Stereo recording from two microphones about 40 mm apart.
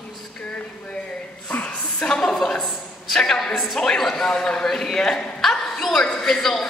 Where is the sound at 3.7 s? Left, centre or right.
Centre.